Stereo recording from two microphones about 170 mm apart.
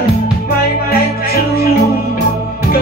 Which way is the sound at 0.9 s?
65° left (ahead or behind).